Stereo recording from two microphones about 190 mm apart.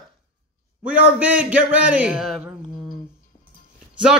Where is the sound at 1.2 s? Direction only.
5° right (ahead or behind).